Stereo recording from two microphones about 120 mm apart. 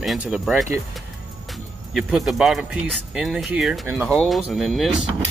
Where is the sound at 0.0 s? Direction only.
5° right (ahead or behind).